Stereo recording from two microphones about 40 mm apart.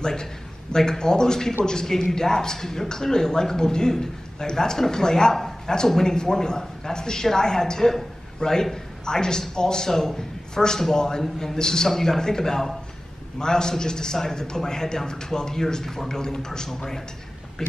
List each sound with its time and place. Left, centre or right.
0.0 s speech: centre